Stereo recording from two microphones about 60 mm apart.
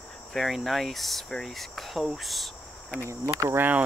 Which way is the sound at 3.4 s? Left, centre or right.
Right.